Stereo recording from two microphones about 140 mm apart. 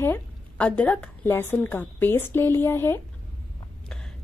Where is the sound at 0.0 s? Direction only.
10° left (ahead or behind).